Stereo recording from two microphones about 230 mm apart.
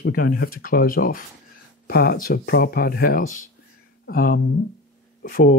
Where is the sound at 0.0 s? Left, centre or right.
Left.